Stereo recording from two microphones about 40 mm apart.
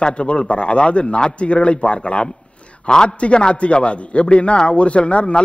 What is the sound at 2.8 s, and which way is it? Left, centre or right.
A man's voice, centre.